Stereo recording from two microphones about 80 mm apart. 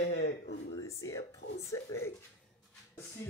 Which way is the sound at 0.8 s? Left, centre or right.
Left.